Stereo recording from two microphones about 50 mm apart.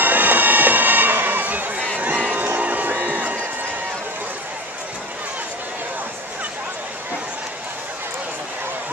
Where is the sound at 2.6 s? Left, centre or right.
Right.